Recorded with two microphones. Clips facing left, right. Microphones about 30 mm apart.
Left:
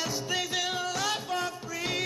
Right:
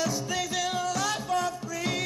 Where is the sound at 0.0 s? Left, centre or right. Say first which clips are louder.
Right 2 dB; centre.